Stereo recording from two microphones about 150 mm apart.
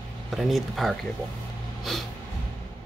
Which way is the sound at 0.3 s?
Centre (ahead or behind).